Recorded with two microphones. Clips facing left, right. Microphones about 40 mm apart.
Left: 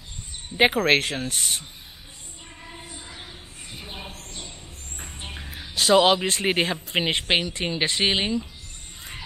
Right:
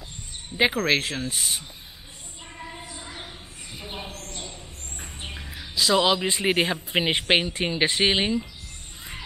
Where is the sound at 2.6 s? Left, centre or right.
Centre.